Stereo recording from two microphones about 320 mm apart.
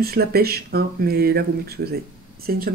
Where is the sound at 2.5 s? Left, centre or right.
Right.